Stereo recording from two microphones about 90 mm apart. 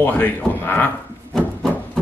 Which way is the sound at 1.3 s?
5° left (ahead or behind).